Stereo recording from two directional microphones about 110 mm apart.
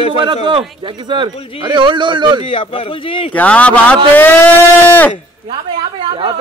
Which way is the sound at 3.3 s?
10° left (ahead or behind).